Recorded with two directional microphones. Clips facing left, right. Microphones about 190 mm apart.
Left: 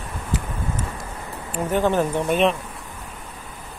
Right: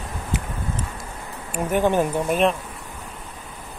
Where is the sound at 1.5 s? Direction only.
15° right (ahead or behind).